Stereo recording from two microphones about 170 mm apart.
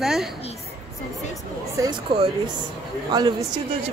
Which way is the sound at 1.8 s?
30° right (ahead or behind).